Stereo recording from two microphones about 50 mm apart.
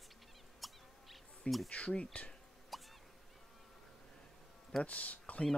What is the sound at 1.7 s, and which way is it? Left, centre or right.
Speech, left.